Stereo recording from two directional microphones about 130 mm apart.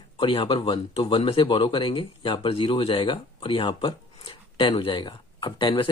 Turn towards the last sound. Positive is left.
turn(degrees=40)  # may be behind; listen again after turning